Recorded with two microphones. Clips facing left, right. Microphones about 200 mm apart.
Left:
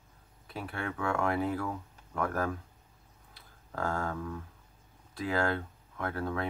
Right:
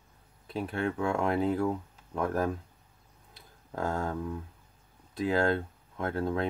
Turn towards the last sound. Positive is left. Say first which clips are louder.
# right 4 dB
turn(degrees=-25)  # may be behind; listen again after turning